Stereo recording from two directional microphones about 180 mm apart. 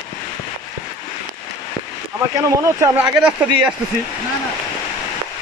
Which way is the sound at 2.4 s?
15° right (ahead or behind).